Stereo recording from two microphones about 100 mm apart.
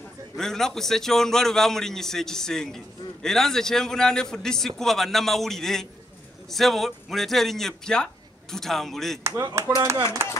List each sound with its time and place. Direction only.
0.4 s a man's voice: 5° left (ahead or behind)
9.4 s speech: 35° right (ahead or behind)